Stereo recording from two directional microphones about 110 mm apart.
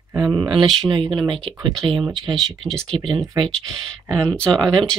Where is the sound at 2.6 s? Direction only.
5° left (ahead or behind).